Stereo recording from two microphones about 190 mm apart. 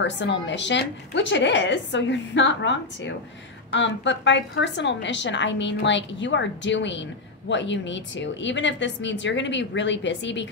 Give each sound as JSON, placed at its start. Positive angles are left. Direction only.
{"t": 0.0, "sound": "a woman's voice", "side_deg": 70}